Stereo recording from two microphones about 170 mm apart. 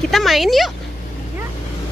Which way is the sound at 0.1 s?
Centre (ahead or behind).